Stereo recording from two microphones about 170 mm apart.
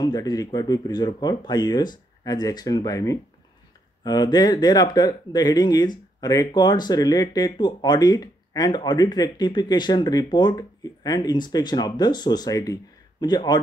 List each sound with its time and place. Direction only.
0.0 s speech: 20° left (ahead or behind)